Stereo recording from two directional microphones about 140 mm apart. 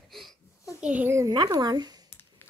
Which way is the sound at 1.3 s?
30° right (ahead or behind).